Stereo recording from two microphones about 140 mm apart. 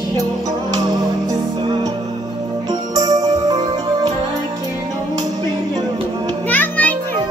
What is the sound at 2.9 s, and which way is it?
Music, 25° right (ahead or behind).